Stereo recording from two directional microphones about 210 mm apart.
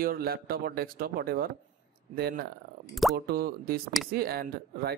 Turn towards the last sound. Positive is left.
turn(degrees=-45)  # may be behind; listen again after turning